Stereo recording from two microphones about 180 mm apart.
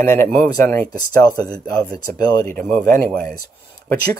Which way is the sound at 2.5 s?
5° left (ahead or behind).